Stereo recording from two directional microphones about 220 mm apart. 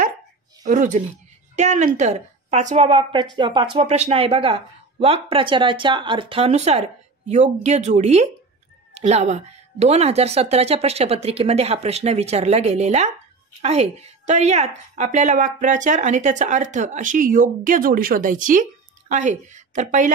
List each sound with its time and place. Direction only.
0.7 s a woman's voice: 35° right (ahead or behind)